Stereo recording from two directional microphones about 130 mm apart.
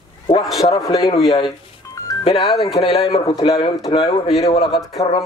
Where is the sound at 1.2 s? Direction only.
45° left (ahead or behind).